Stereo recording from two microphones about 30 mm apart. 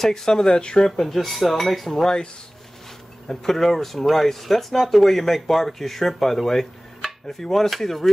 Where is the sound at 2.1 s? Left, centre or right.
Left.